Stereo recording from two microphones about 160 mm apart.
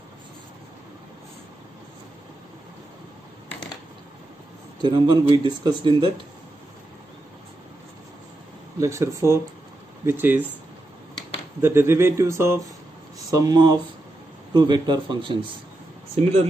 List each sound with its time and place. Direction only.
4.8 s speech: 25° right (ahead or behind)
8.7 s a man's voice: 20° right (ahead or behind)
11.6 s a man's voice: 15° right (ahead or behind)